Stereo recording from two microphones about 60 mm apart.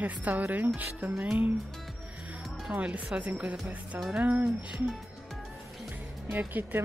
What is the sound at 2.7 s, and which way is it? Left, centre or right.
A woman's voice, right.